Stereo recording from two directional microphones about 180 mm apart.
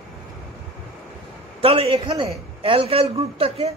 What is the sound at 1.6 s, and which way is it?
Speech, 30° right (ahead or behind).